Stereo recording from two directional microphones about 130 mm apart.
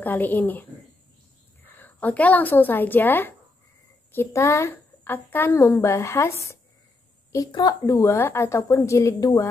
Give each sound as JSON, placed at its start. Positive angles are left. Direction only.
{"t": 0.0, "sound": "speech", "side_deg": 15}
{"t": 1.8, "sound": "a woman's voice", "side_deg": 10}